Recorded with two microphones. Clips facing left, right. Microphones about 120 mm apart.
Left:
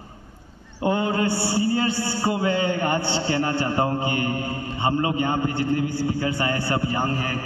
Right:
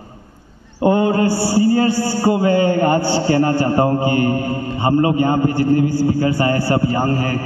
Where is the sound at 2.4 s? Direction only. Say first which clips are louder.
Right 7 dB; 20° left (ahead or behind).